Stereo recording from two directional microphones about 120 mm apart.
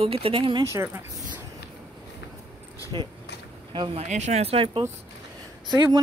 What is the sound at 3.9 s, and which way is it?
Speech, 75° right (ahead or behind).